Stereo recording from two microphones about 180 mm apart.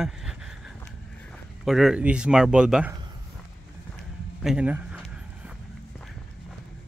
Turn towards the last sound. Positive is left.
turn(degrees=-10)  # may be behind; listen again after turning